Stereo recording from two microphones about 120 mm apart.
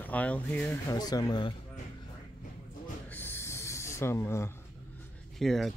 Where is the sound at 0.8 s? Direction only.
30° left (ahead or behind).